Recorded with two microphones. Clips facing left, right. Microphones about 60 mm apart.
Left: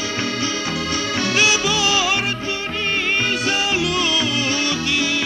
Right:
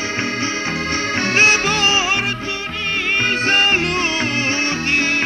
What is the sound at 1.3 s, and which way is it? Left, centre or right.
Music, right.